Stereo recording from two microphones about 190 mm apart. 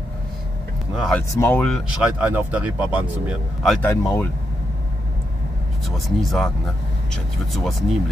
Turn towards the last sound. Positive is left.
turn(degrees=0)  # may be behind; listen again after turning